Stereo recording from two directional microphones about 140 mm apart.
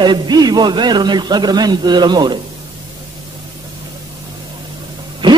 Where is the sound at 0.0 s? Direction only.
30° right (ahead or behind).